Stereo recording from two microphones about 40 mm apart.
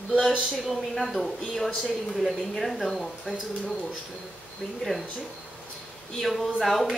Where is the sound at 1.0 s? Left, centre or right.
Centre.